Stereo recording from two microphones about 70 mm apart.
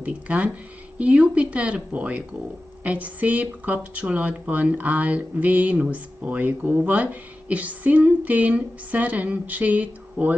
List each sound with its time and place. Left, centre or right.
0.0 s speech: centre